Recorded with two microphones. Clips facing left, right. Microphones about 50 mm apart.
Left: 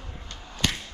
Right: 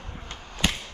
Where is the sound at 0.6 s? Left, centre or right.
Centre.